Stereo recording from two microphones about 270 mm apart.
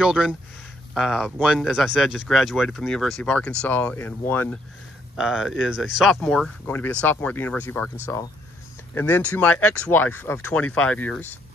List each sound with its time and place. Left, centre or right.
0.0 s speech: centre
8.9 s speech: centre